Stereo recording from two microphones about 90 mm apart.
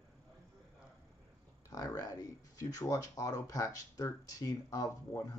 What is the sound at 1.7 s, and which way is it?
Speech, 40° left (ahead or behind).